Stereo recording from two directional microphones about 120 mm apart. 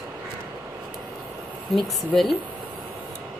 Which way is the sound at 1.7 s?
Centre (ahead or behind).